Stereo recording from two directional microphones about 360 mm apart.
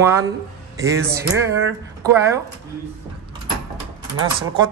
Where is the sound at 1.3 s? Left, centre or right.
Right.